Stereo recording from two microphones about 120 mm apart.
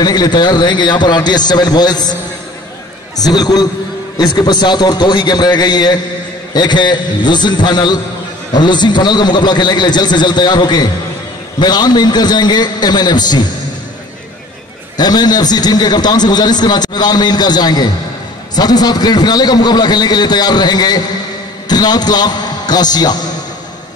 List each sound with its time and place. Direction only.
0.0 s a man's voice: 35° left (ahead or behind)
3.2 s a man's voice: 35° left (ahead or behind)
15.0 s a man's voice: 35° left (ahead or behind)